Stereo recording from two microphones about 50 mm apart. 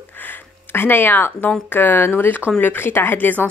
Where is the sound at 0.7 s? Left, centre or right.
Left.